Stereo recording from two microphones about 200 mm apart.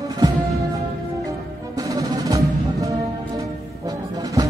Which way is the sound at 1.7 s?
15° right (ahead or behind).